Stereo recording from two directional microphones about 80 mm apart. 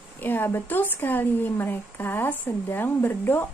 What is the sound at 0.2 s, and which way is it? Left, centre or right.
A woman's voice, left.